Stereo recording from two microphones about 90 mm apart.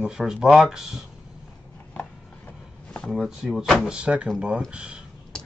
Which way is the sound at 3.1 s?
5° right (ahead or behind).